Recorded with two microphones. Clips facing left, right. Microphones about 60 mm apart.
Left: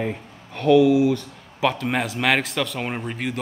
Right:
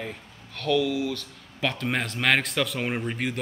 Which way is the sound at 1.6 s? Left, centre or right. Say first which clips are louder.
Left 5 dB; centre.